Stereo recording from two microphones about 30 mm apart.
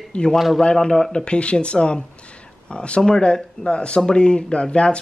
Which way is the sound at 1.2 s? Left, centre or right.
Left.